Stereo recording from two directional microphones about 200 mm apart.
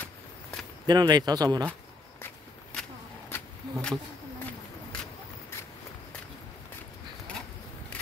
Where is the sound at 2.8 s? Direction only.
5° left (ahead or behind).